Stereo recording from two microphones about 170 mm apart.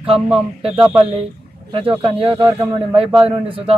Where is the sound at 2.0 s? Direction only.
30° right (ahead or behind).